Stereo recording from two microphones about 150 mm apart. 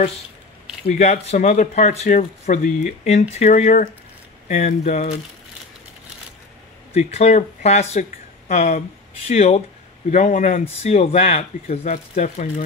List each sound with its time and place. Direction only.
0.8 s speech: 45° left (ahead or behind)
6.9 s speech: 45° left (ahead or behind)